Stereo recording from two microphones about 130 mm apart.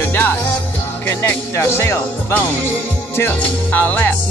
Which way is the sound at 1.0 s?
15° left (ahead or behind).